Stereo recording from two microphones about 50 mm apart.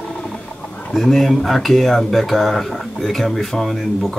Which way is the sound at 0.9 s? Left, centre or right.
Centre.